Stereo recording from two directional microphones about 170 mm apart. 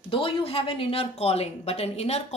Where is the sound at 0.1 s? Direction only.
30° left (ahead or behind).